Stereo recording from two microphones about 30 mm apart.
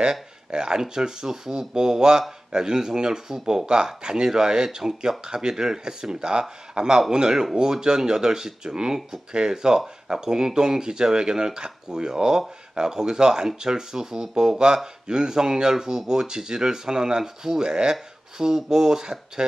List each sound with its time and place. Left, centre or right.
0.0 s speech: right
17.2 s speech: centre
17.6 s speech: right